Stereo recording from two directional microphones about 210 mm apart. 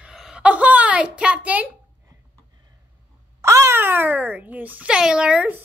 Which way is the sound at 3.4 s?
15° right (ahead or behind).